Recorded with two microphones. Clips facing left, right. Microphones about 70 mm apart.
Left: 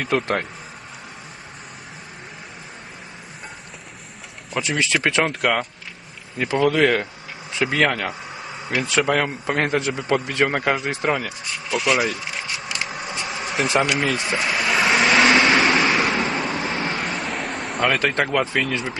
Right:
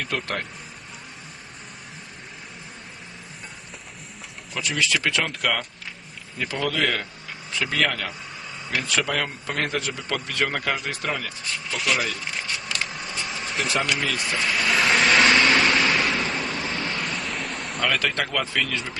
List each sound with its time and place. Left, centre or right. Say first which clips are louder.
0.0 s speech: left 7 dB; left
4.6 s speech: left 3 dB; left
5.4 s speech: left 4 dB; left
6.3 s speech: left 8 dB; left
11.2 s speech: left 2 dB; centre
12.0 s vehicle: left 4 dB; centre
13.7 s speech: left 5 dB; centre
14.1 s speech: left 3 dB; left
14.7 s vehicle: left 2 dB; centre
15.6 s vehicle: left 3 dB; left
17.3 s a sound: left 4 dB; centre
18.0 s speech: left 5 dB; left